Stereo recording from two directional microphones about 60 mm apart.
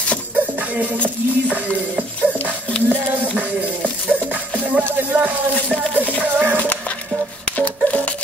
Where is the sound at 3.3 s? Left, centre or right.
Right.